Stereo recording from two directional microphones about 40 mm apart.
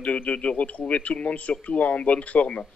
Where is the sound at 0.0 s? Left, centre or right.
Left.